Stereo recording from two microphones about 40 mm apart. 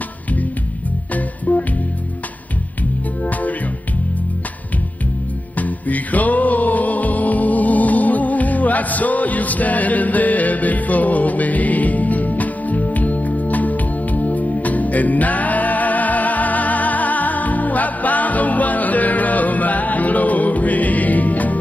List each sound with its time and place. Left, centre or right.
1.1 s music: left
3.3 s music: left
5.6 s music: left